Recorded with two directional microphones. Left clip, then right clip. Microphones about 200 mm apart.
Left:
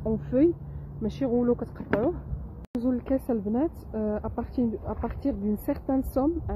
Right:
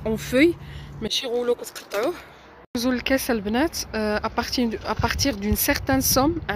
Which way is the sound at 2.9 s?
10° right (ahead or behind).